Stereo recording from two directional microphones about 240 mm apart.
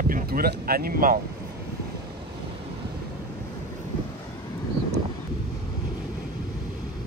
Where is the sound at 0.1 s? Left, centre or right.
Right.